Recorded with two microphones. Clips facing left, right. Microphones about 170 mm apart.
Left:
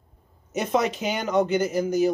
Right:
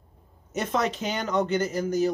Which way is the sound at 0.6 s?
10° left (ahead or behind).